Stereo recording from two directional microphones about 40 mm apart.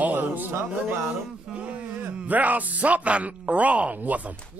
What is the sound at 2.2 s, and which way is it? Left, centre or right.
Speech, right.